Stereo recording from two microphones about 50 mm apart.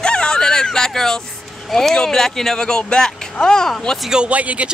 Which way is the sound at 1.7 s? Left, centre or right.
Centre.